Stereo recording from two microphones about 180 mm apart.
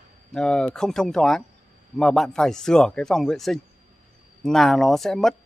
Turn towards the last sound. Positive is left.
turn(degrees=0)  # may be behind; listen again after turning